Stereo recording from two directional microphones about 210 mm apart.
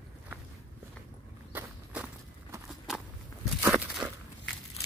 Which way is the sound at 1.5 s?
10° right (ahead or behind).